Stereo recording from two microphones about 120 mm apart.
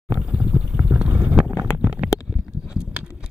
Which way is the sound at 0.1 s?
10° right (ahead or behind).